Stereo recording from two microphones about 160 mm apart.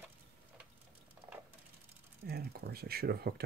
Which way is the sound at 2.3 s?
85° right.